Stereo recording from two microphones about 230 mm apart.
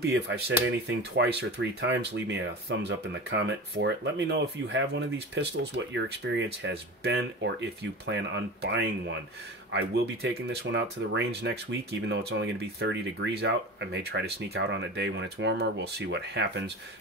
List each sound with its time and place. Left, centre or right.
0.0 s speech: right